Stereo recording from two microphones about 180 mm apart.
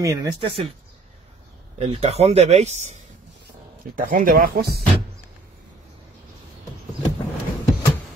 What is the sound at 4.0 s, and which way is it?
Speech, 50° right (ahead or behind).